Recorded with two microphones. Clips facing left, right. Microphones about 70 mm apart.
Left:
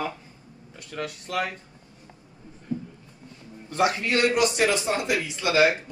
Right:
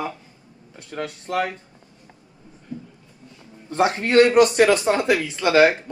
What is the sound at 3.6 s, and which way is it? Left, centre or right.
A man's voice, right.